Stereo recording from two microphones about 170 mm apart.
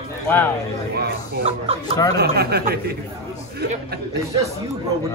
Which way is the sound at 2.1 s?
65° right (ahead or behind).